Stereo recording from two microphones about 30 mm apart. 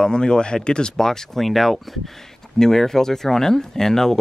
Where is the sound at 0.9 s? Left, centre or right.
Centre.